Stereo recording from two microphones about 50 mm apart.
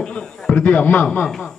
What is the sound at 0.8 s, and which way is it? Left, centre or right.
Speech, left.